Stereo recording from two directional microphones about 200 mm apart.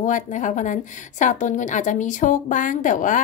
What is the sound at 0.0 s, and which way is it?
A woman's voice, 40° left (ahead or behind).